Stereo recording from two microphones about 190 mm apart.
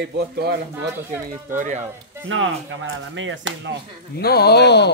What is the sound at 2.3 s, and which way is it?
Speech, 90° right.